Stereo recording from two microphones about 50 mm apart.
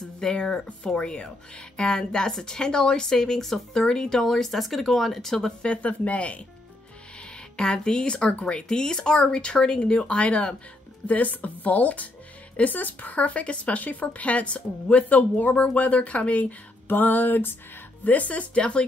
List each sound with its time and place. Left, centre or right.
0.2 s speech: centre
5.6 s speech: left
7.2 s speech: centre; by 17.6 s left
18.0 s speech: left